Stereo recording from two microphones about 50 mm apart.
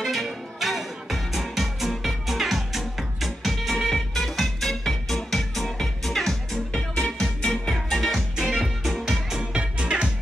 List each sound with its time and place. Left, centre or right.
0.0 s music: centre
8.4 s music: centre
8.9 s music: centre
9.5 s music: centre